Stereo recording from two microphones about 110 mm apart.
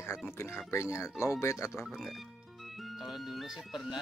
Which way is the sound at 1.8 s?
Centre (ahead or behind).